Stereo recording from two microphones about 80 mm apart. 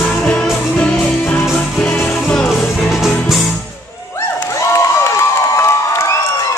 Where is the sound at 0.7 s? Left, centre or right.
Centre.